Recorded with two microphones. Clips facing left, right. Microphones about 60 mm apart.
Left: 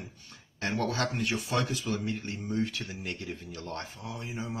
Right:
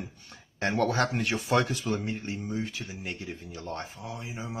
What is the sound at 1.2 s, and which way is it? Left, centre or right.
Speech, right.